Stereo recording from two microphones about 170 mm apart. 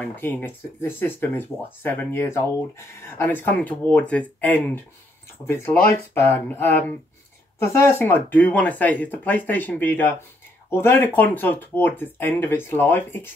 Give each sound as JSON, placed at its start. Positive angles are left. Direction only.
{"t": 0.0, "sound": "speech", "side_deg": 10}